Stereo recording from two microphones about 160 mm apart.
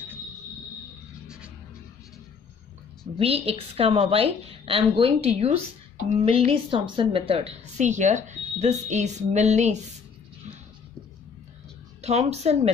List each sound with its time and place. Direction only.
1.2 s music: 5° right (ahead or behind)
3.2 s a woman's voice: 40° right (ahead or behind)
12.0 s a woman's voice: 40° right (ahead or behind)